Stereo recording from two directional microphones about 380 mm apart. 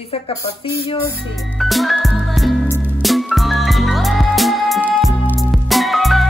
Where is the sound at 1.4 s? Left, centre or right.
Centre.